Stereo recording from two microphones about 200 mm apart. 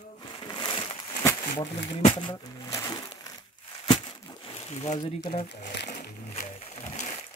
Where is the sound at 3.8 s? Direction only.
25° left (ahead or behind).